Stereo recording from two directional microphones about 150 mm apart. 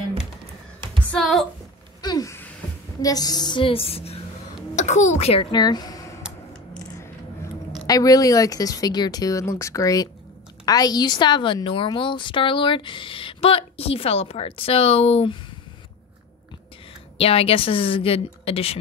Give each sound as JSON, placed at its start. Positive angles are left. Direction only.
{"t": 1.1, "sound": "speech", "side_deg": 0}
{"t": 2.0, "sound": "a sound", "side_deg": 25}
{"t": 3.0, "sound": "a woman's voice", "side_deg": 25}
{"t": 4.7, "sound": "a woman's voice", "side_deg": 50}
{"t": 5.5, "sound": "speech", "side_deg": 30}
{"t": 7.8, "sound": "a woman's voice", "side_deg": 25}
{"t": 17.2, "sound": "a woman's voice", "side_deg": 40}